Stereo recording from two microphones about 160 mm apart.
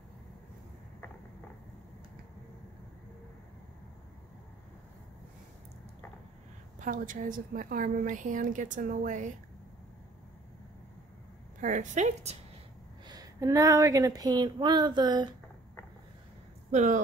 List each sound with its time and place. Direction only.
6.8 s a woman's voice: 55° right (ahead or behind)
11.6 s speech: 50° right (ahead or behind)
13.0 s speech: 25° right (ahead or behind)
16.7 s speech: 50° right (ahead or behind)